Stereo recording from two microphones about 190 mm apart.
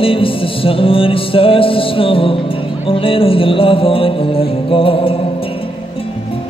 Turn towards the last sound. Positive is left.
turn(degrees=30)  # may be behind; listen again after turning